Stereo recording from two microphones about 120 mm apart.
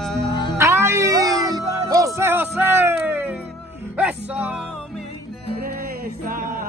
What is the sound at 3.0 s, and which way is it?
Music, 15° right (ahead or behind).